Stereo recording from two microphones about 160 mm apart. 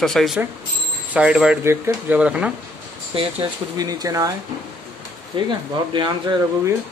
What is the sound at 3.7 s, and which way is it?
Speech, 25° right (ahead or behind).